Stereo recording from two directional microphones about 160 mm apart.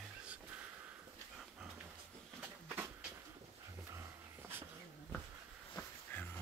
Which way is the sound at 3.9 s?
15° right (ahead or behind).